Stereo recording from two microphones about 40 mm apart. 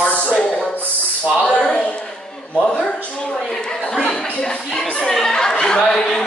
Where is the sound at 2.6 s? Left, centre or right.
Left.